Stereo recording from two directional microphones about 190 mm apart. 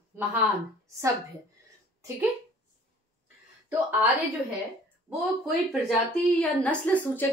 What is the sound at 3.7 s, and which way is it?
Speech, 10° right (ahead or behind).